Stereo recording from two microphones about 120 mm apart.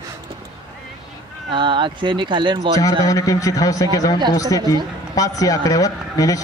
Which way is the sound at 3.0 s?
30° left (ahead or behind).